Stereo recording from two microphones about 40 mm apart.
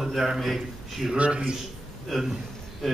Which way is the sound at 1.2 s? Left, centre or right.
Right.